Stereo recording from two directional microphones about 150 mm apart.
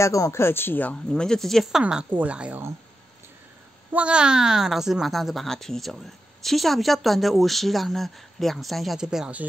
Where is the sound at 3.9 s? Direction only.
10° right (ahead or behind).